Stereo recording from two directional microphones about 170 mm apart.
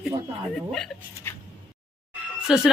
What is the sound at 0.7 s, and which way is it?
Speech, 5° left (ahead or behind).